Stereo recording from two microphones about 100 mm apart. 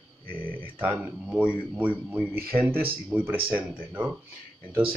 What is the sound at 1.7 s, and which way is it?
Speech, 15° right (ahead or behind).